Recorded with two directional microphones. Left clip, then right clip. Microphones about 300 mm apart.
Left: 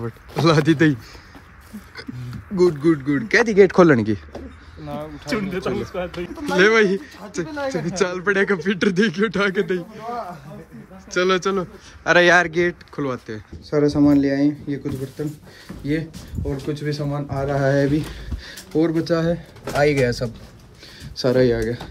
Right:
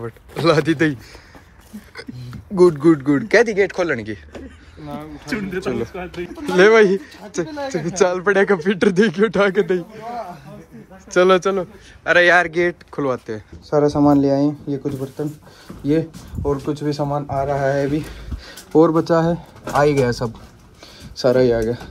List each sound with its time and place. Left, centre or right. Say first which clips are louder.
0.0 s speech: right 1 dB; centre
2.3 s speech: right 4 dB; centre
3.4 s speech: left 5 dB; left
4.8 s speech: even; centre
5.3 s speech: even; left
6.4 s speech: right 4 dB; centre
12.0 s speech: right 1 dB; centre
16.7 s speech: right 5 dB; centre